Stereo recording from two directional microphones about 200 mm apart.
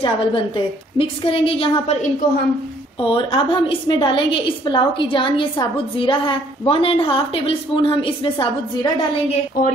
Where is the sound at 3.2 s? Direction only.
25° left (ahead or behind).